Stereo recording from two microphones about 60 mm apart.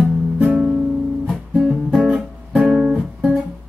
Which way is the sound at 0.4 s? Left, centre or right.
Centre.